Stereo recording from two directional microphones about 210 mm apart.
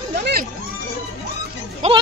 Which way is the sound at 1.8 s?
35° right (ahead or behind).